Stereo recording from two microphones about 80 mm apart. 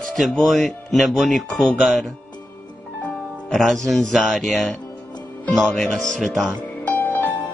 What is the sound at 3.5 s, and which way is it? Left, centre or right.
Speech, centre.